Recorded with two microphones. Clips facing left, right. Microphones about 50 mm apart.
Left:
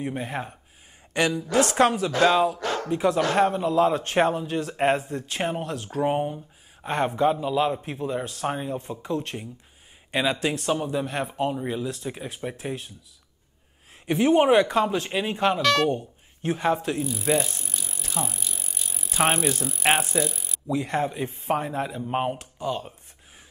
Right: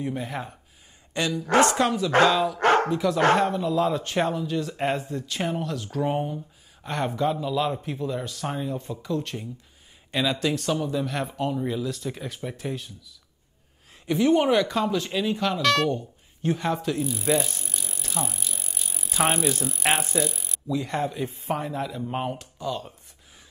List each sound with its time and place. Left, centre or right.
0.0 s speech: left
1.1 s speech: left
1.4 s a woman's voice: right
1.8 s speech: left
2.5 s bow-wow: right
2.9 s speech: left
6.0 s a sound: centre
6.9 s speech: left
14.0 s speech: left
15.6 s speech: centre
16.6 s speech: left
17.0 s bicycle: centre
19.9 s speech: centre
20.6 s speech: left